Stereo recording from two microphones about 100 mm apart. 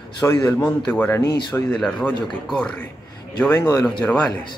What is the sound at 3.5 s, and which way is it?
Speech, 30° left (ahead or behind).